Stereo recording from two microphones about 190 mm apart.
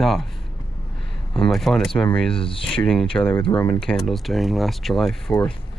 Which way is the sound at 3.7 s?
Centre (ahead or behind).